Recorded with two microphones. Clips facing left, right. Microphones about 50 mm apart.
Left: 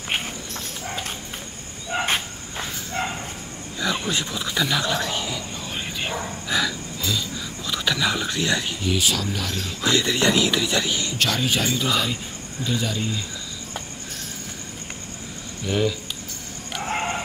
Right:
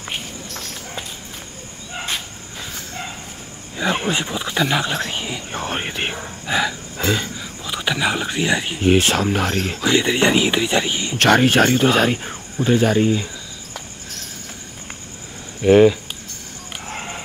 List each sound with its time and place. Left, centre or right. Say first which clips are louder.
2.0 s a sound: left 2 dB; left
4.1 s speech: right 4 dB; right
5.5 s speech: right 6 dB; right
6.1 s speech: even; right
7.0 s speech: right 7 dB; right
7.3 s speech: right 1 dB; right
8.7 s speech: right 8 dB; right
9.8 s speech: right 3 dB; right
11.1 s speech: right 12 dB; right
15.6 s speech: right 12 dB; right